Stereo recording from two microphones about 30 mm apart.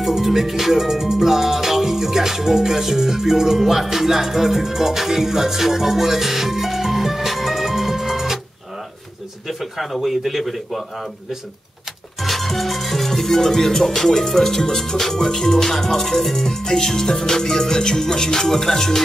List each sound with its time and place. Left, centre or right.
0.0 s music: centre
9.5 s speech: centre
12.2 s music: centre